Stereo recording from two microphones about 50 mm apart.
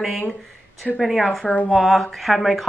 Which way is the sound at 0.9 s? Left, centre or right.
Centre.